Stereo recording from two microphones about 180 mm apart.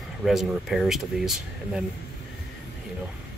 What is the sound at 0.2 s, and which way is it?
Speech, centre (ahead or behind).